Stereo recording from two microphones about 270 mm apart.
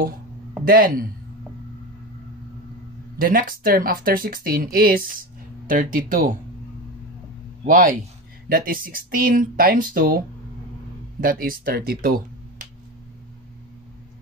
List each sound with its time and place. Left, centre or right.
0.7 s speech: right
3.2 s speech: right
7.6 s speech: right